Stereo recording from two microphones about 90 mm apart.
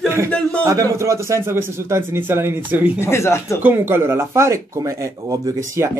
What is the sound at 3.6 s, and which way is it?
Speech, 25° right (ahead or behind).